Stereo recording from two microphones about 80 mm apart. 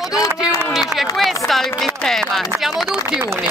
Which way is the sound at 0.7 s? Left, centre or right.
Centre.